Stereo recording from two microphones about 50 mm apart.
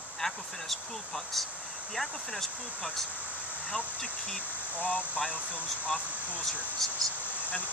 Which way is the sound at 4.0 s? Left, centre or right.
Centre.